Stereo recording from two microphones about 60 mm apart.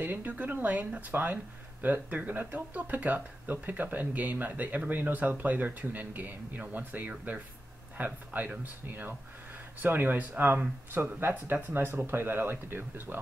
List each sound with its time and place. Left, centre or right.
0.0 s speech: right